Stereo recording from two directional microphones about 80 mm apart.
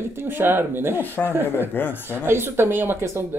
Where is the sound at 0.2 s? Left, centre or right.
Right.